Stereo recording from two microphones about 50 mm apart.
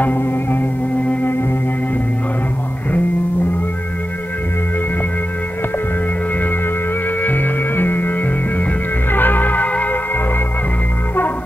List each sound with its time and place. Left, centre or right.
0.0 s music: left
7.2 s music: left